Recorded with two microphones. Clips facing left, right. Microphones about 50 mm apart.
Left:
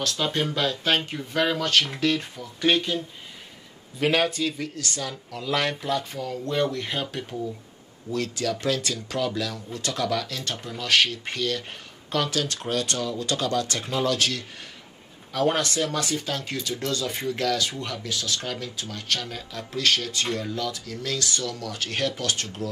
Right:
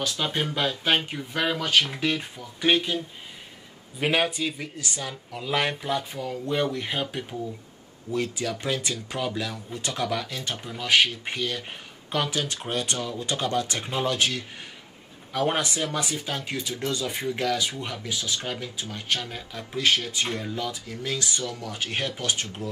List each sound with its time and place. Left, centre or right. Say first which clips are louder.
0.0 s speech: left 2 dB; centre
4.0 s speech: left 2 dB; centre